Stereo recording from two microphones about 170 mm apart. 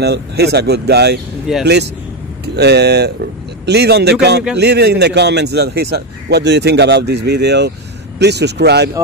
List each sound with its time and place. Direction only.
0.0 s a man's voice: 75° right (ahead or behind)
1.5 s speech: centre (ahead or behind)
2.4 s a man's voice: 75° right (ahead or behind)